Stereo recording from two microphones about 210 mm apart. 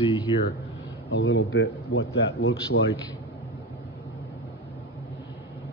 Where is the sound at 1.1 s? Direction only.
60° left (ahead or behind).